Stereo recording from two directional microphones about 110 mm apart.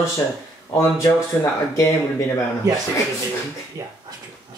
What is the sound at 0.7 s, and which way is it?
Speech, 25° left (ahead or behind).